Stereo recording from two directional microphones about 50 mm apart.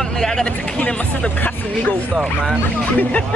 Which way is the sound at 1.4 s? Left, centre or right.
Left.